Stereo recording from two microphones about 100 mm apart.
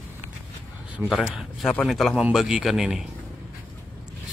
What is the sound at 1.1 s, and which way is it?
Speech, 5° right (ahead or behind).